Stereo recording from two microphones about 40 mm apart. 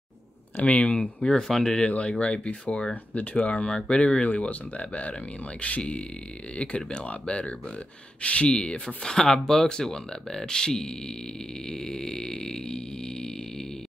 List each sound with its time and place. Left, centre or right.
0.6 s speech: left
1.5 s speech: centre
1.9 s speech: left
2.9 s speech: left
3.7 s speech: left